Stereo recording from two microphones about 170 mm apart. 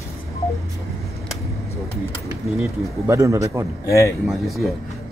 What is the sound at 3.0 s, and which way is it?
Speech, 15° right (ahead or behind).